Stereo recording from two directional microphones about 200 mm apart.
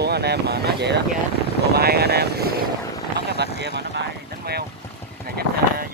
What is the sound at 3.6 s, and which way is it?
Speech, 55° right (ahead or behind).